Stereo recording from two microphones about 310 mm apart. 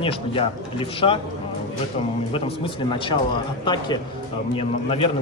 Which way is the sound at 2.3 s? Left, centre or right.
Centre.